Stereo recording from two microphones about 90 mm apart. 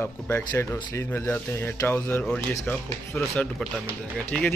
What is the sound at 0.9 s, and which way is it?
Speech, 30° left (ahead or behind).